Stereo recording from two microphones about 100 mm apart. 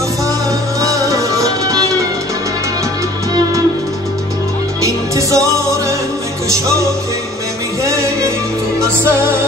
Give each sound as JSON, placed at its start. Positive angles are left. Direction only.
{"t": 0.7, "sound": "music", "side_deg": -35}
{"t": 4.8, "sound": "music", "side_deg": -30}
{"t": 7.8, "sound": "music", "side_deg": -30}